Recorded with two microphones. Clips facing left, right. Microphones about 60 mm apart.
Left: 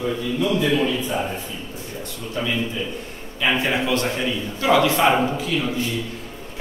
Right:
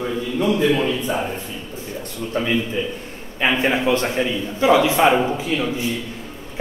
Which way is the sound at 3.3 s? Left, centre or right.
Right.